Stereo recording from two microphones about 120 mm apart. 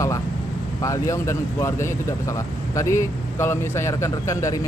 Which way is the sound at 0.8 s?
25° left (ahead or behind).